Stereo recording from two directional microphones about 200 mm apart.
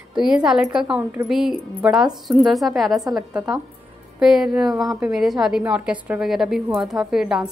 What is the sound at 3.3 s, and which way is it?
A woman's voice, 5° right (ahead or behind).